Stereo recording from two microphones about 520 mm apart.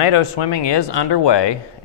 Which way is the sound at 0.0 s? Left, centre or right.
Left.